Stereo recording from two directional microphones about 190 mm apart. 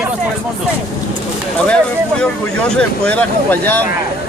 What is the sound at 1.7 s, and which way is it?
Speech, 5° left (ahead or behind).